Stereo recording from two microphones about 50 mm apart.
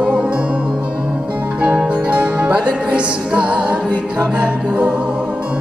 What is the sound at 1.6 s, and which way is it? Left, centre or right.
Music, right.